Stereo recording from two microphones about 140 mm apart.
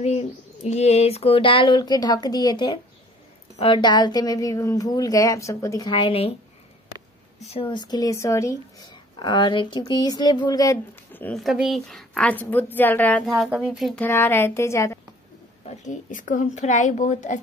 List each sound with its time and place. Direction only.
0.7 s a woman's voice: 50° left (ahead or behind); by 5.9 s 25° left (ahead or behind)
5.9 s speech: 40° left (ahead or behind)
7.3 s speech: 45° left (ahead or behind); by 10.8 s 25° left (ahead or behind)
11.3 s a woman's voice: 5° right (ahead or behind); by 13.2 s 15° left (ahead or behind)
13.2 s speech: centre (ahead or behind)
13.9 s a woman's voice: 15° left (ahead or behind)
15.6 s a woman's voice: 55° left (ahead or behind)